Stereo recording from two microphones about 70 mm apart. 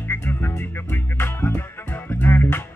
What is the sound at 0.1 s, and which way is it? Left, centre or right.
Music, left.